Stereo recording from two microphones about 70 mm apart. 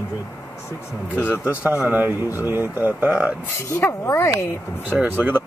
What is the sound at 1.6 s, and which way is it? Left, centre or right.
Speech, right.